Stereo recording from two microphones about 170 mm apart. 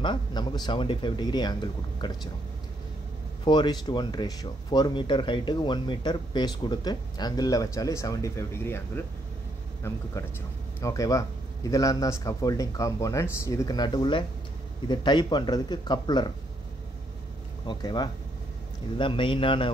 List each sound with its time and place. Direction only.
0.0 s speech: 25° left (ahead or behind)
3.4 s speech: 25° left (ahead or behind)
17.6 s speech: 25° left (ahead or behind)